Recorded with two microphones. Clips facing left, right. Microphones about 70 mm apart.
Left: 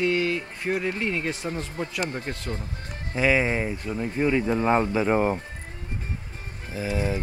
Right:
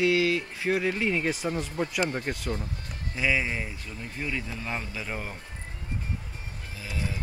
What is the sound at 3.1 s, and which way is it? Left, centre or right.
Speech, left.